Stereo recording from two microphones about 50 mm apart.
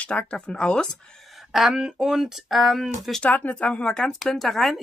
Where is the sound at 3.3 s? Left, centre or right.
Left.